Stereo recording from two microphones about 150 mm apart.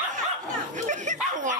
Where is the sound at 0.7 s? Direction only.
55° right (ahead or behind).